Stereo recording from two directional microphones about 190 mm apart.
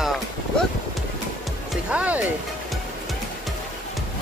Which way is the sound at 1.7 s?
5° right (ahead or behind).